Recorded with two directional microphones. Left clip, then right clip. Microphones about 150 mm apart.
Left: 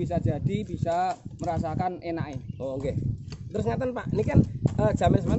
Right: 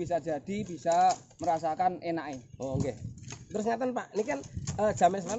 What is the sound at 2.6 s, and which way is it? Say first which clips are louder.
Speech: left 4 dB; 20° left (ahead or behind).